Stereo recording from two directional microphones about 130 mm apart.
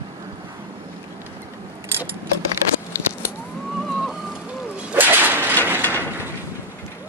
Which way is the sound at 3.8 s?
5° right (ahead or behind).